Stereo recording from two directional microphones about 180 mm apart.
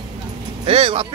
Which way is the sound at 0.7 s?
30° right (ahead or behind).